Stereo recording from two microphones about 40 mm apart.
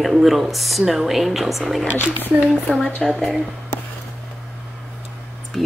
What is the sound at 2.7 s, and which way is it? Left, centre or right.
Speech, left.